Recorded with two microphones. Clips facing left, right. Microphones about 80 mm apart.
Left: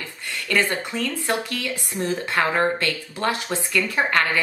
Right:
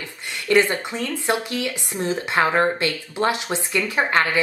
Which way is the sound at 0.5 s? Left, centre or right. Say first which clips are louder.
Right 5 dB; centre.